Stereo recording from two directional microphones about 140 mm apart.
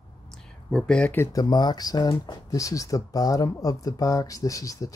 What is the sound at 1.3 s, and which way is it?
Speech, 30° left (ahead or behind).